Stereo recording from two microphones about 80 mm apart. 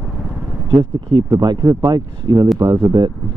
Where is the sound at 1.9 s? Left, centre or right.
Right.